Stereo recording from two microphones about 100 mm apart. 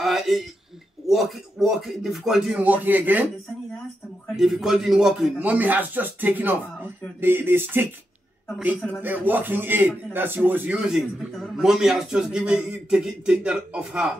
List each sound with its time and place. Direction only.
0.0 s a sound: centre (ahead or behind)
1.0 s a man's voice: centre (ahead or behind); by 3.3 s 20° right (ahead or behind)
4.4 s a man's voice: centre (ahead or behind)
5.4 s speech: 15° right (ahead or behind)
9.0 s speech: 20° right (ahead or behind)
10.9 s a man's voice: centre (ahead or behind)